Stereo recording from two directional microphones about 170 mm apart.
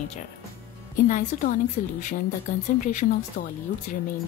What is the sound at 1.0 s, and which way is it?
A woman's voice, 55° left (ahead or behind).